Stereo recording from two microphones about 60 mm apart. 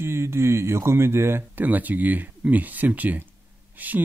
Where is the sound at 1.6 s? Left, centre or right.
Right.